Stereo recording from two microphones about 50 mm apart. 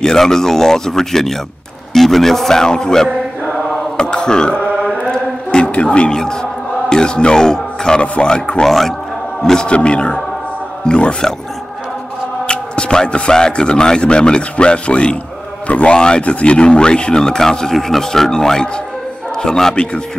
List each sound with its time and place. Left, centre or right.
0.0 s speech: centre
3.1 s chant: centre
3.9 s speech: centre
5.1 s a sound: centre
6.9 s speech: centre
8.6 s a man's voice: centre
9.7 s speech: left
12.4 s speech: centre